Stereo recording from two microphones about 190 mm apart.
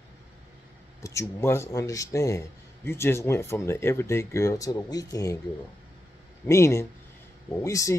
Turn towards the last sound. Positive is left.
turn(degrees=15)  # may be behind; listen again after turning